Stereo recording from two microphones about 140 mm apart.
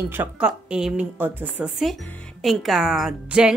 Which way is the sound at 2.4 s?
Centre (ahead or behind).